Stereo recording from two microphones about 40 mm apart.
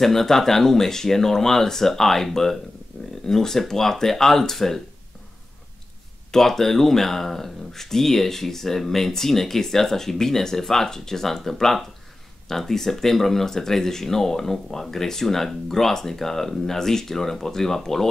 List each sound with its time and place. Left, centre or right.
0.0 s speech: centre
2.9 s a sound: centre
3.3 s speech: centre
6.3 s speech: centre